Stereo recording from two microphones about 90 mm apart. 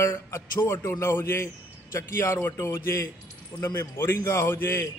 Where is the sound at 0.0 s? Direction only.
30° left (ahead or behind).